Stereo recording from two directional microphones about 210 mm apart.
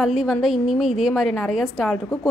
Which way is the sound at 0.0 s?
Centre (ahead or behind).